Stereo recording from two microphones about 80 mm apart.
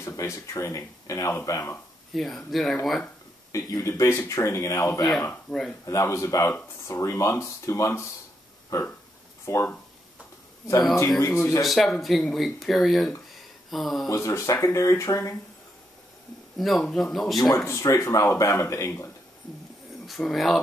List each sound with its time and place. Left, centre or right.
0.0 s speech: left
2.1 s speech: centre
3.5 s speech: left
5.5 s speech: centre
5.9 s speech: left
8.7 s a sound: left
9.5 s speech: left
11.1 s speech: left
11.6 s speech: centre
14.0 s speech: left
16.5 s speech: centre
17.6 s speech: left
20.1 s speech: centre